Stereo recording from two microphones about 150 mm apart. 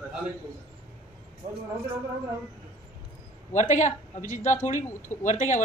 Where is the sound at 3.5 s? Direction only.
55° left (ahead or behind).